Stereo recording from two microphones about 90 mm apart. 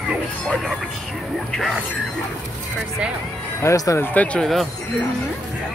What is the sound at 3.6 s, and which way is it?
Speech, 35° left (ahead or behind).